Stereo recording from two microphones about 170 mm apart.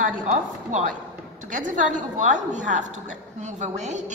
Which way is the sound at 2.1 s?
45° right (ahead or behind).